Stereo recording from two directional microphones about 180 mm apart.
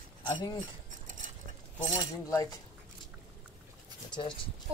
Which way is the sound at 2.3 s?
15° left (ahead or behind).